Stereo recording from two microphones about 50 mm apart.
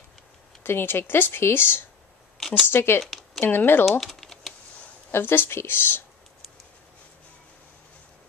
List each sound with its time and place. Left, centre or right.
0.7 s a woman's voice: left
3.0 s speech: centre
3.3 s a woman's voice: left
4.0 s typing: centre
5.1 s a woman's voice: left